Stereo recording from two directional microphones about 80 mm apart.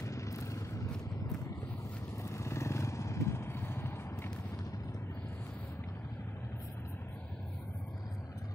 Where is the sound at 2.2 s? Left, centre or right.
Left.